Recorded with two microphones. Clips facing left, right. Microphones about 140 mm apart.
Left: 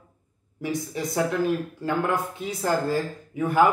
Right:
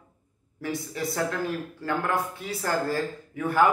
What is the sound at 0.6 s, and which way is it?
Speech, 15° left (ahead or behind).